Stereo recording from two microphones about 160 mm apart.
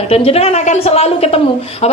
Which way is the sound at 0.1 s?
40° left (ahead or behind).